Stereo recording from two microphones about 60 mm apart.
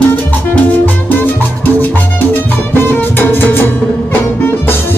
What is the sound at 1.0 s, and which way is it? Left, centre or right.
Music, left.